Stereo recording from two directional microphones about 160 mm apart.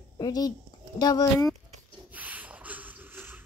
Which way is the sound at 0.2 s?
25° left (ahead or behind).